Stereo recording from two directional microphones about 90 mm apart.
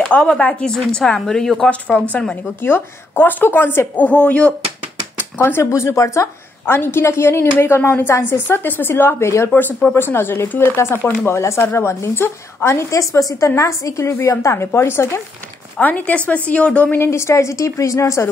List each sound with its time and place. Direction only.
0.0 s a woman's voice: 10° left (ahead or behind)
5.1 s a woman's voice: 25° left (ahead or behind)
15.8 s speech: 15° left (ahead or behind)
17.1 s speech: 30° left (ahead or behind)